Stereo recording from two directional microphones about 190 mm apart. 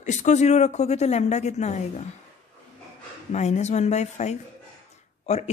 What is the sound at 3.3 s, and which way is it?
Speech, 35° left (ahead or behind).